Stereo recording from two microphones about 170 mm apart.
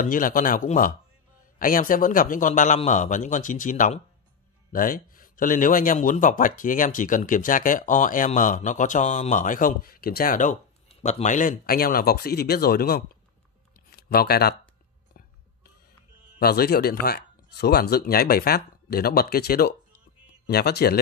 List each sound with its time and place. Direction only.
0.0 s speech: 55° left (ahead or behind)
10.9 s speech: 40° left (ahead or behind); by 14.5 s 65° left (ahead or behind)
16.3 s speech: 65° left (ahead or behind)